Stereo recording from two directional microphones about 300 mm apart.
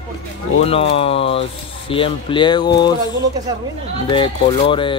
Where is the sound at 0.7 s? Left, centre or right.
Centre.